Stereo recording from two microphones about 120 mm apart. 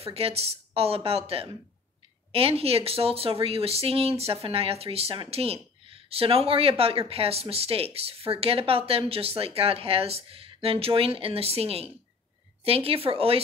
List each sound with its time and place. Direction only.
0.0 s speech: 55° right (ahead or behind)